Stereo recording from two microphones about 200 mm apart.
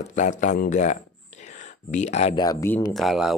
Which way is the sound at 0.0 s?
35° left (ahead or behind).